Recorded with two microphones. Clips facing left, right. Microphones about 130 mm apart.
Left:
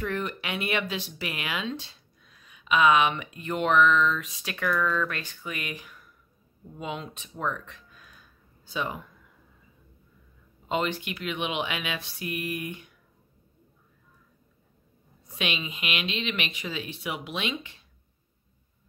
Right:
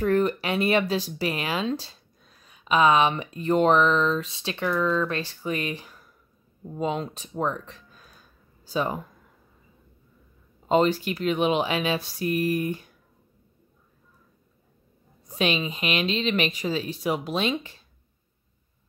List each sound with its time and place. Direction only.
0.0 s speech: 40° right (ahead or behind)
10.7 s speech: 35° right (ahead or behind)
15.2 s speech: 40° right (ahead or behind)